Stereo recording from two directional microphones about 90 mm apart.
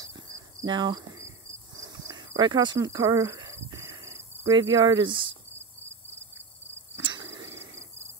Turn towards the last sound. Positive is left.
turn(degrees=-35)  # may be behind; listen again after turning